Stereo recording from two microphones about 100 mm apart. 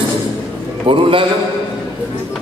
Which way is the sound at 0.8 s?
60° right (ahead or behind).